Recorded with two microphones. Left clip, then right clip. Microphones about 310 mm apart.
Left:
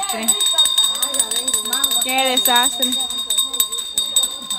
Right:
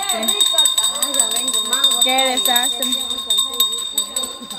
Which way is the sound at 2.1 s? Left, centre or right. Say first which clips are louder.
Even; centre.